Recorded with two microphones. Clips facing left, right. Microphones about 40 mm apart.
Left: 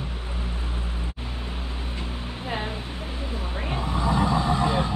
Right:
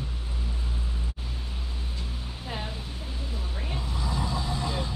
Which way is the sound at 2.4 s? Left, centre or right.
Left.